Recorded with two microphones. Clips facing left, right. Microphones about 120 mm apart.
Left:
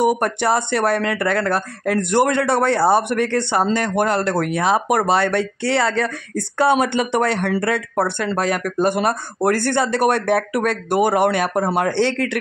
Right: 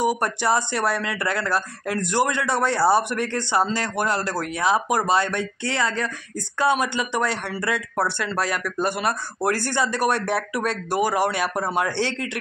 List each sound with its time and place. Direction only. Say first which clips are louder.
0.2 s speech: left 3 dB; 55° left (ahead or behind)
6.6 s speech: left 5 dB; 60° left (ahead or behind)